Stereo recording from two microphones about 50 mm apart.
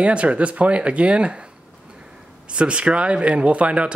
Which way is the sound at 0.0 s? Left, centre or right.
Right.